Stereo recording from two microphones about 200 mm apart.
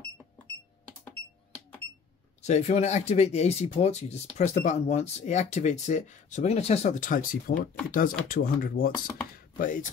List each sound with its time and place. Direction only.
2.4 s speech: 35° left (ahead or behind)